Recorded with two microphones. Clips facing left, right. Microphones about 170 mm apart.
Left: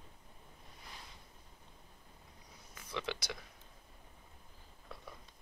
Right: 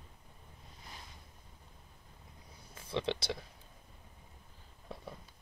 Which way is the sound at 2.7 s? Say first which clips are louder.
Right 6 dB; 30° right (ahead or behind).